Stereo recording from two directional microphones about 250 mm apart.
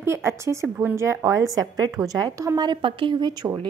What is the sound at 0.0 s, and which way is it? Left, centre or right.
A woman's voice, centre.